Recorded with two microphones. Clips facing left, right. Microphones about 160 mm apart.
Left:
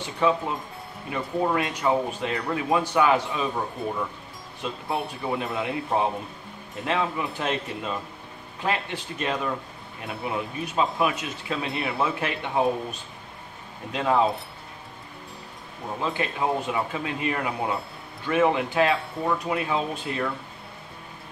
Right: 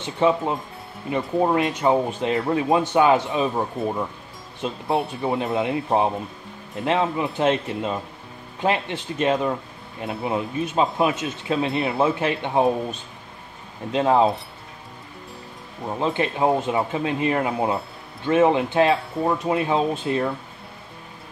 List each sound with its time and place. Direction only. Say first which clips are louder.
0.0 s speech: right 4 dB; 25° right (ahead or behind)
13.9 s speech: right 4 dB; 30° right (ahead or behind)
16.0 s speech: right 5 dB; 30° right (ahead or behind)